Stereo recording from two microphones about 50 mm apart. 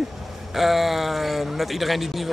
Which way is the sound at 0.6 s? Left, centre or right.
Centre.